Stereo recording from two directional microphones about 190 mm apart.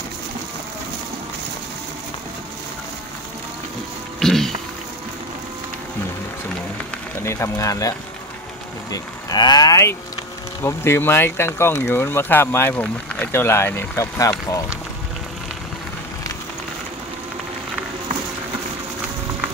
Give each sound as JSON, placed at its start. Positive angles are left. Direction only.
{"t": 4.2, "sound": "a sound", "side_deg": 0}
{"t": 7.2, "sound": "speech", "side_deg": 15}
{"t": 8.9, "sound": "speech", "side_deg": 20}